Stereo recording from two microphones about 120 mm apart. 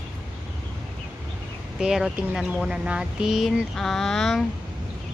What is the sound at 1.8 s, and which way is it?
Speech, 5° right (ahead or behind).